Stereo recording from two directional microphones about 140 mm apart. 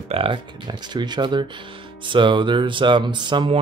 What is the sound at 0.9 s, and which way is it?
Speech, 30° right (ahead or behind).